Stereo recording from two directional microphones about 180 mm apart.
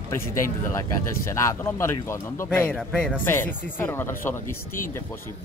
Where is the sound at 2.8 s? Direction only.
5° right (ahead or behind).